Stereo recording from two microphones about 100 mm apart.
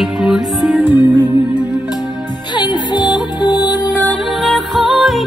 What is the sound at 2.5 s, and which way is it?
Music, 50° left (ahead or behind).